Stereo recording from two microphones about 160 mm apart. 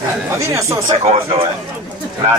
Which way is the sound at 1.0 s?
35° right (ahead or behind).